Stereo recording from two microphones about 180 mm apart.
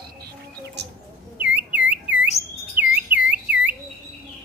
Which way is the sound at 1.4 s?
10° right (ahead or behind).